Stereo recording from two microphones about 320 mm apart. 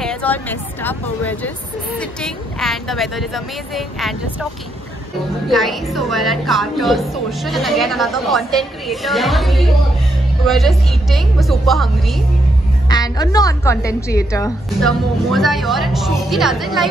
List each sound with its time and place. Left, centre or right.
0.0 s a woman's voice: centre
5.5 s a woman's voice: centre
12.8 s a woman's voice: centre